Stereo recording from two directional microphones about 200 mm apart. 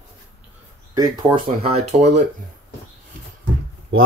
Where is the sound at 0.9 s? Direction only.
25° right (ahead or behind).